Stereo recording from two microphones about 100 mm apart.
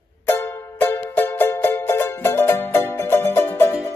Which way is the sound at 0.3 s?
20° left (ahead or behind).